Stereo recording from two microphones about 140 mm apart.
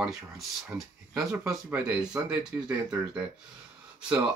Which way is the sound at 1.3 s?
20° right (ahead or behind).